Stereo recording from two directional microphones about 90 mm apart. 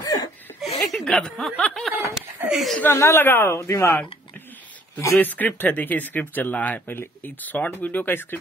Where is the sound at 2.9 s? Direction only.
25° left (ahead or behind).